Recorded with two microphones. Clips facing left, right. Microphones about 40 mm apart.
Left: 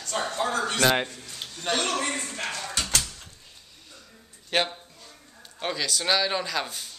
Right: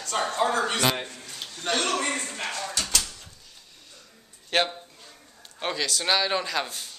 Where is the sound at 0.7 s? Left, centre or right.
Left.